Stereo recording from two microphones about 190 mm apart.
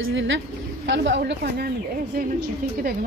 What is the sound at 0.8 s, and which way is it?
Speech, 70° right (ahead or behind).